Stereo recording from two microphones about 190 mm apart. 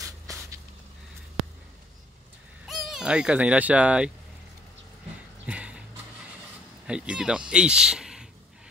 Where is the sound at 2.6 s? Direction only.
Centre (ahead or behind).